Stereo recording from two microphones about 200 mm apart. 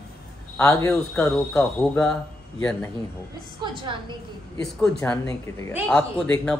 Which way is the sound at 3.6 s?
25° right (ahead or behind).